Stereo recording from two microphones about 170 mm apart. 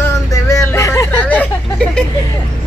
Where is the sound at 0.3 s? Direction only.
15° left (ahead or behind).